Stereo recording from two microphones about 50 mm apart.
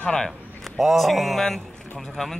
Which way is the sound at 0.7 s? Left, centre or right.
Centre.